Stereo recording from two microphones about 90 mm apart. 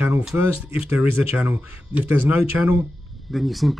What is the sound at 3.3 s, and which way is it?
Speech, centre (ahead or behind).